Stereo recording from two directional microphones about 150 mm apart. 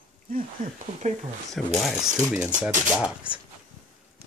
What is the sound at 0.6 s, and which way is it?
Speech, 65° right (ahead or behind).